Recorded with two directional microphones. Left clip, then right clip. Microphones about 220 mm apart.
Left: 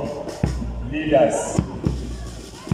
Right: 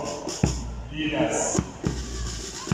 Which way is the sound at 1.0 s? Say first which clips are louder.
Left 3 dB; 50° left (ahead or behind).